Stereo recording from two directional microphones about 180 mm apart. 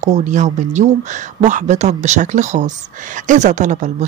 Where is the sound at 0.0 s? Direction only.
40° right (ahead or behind).